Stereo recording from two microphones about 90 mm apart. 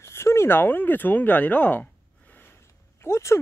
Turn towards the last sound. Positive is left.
turn(degrees=30)  # may be behind; listen again after turning